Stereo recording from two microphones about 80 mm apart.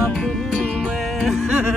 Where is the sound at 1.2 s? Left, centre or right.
Centre.